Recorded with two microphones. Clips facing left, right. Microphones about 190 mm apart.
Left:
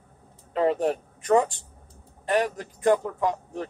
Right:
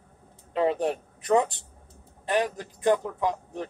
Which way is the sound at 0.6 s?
Centre (ahead or behind).